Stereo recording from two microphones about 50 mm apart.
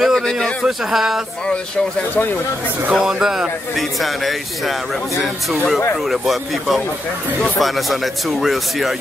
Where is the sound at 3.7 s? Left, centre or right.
Centre.